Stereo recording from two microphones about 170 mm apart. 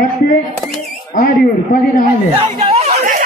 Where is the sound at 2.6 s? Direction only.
35° right (ahead or behind).